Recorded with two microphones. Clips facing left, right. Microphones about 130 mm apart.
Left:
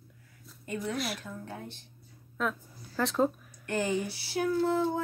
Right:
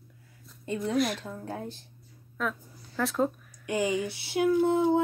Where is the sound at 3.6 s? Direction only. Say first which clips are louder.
Right 2 dB; 15° right (ahead or behind).